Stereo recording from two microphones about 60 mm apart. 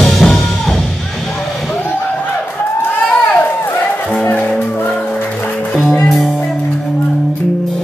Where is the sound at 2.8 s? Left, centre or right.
Left.